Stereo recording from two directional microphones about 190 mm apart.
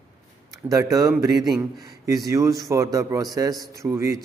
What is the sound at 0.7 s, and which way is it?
A man's voice, 20° right (ahead or behind).